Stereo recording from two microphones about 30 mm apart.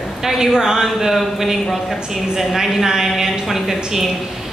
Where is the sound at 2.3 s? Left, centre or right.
Centre.